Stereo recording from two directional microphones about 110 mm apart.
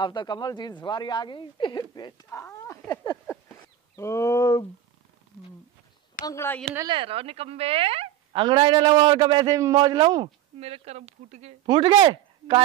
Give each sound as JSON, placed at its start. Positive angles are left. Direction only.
{"t": 0.0, "sound": "speech", "side_deg": 45}
{"t": 2.3, "sound": "speech", "side_deg": 25}
{"t": 3.9, "sound": "a sound", "side_deg": 25}
{"t": 6.2, "sound": "a sound", "side_deg": 25}
{"t": 6.9, "sound": "a woman's voice", "side_deg": -55}
{"t": 10.6, "sound": "speech", "side_deg": -70}
{"t": 11.6, "sound": "a woman's voice", "side_deg": -45}